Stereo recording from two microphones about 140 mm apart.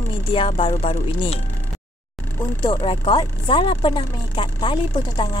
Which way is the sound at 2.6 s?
35° left (ahead or behind).